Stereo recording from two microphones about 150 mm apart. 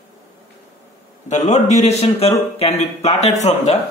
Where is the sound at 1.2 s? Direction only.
50° left (ahead or behind).